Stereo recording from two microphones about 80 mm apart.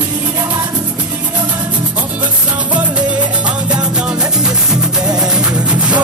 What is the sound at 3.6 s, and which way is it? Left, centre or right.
Music, centre.